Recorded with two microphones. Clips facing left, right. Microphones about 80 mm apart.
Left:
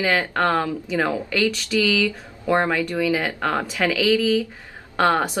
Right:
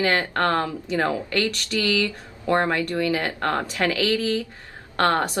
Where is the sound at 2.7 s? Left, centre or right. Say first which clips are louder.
Left 2 dB; centre.